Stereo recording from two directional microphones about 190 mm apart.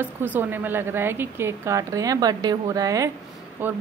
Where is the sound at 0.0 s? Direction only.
10° right (ahead or behind).